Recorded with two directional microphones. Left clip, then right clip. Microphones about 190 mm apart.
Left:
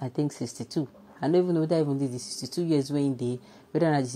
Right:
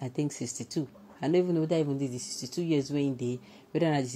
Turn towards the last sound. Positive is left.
turn(degrees=20)  # may be behind; listen again after turning